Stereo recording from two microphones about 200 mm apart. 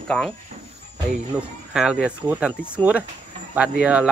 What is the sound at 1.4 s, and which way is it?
Speech, 5° right (ahead or behind).